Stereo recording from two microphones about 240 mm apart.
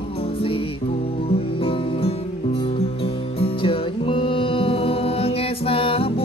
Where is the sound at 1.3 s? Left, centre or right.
Left.